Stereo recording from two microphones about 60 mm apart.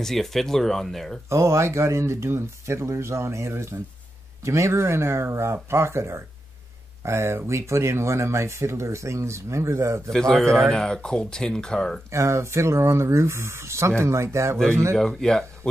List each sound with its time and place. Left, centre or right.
0.0 s speech: centre
1.3 s speech: right
4.5 s speech: right
10.1 s speech: centre
12.1 s speech: right
15.0 s speech: centre